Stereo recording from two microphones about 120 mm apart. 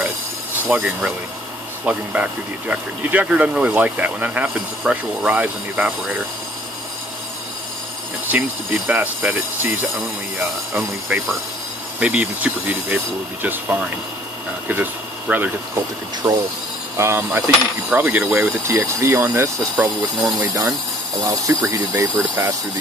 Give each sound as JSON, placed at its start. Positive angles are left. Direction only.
{"t": 0.7, "sound": "speech", "side_deg": -15}
{"t": 1.9, "sound": "speech", "side_deg": -10}
{"t": 8.3, "sound": "speech", "side_deg": -15}
{"t": 10.7, "sound": "speech", "side_deg": -15}
{"t": 15.7, "sound": "speech", "side_deg": -30}
{"t": 16.9, "sound": "speech", "side_deg": -20}